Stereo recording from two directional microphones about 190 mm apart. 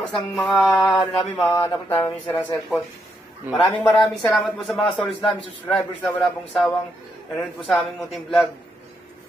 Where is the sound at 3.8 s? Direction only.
5° left (ahead or behind).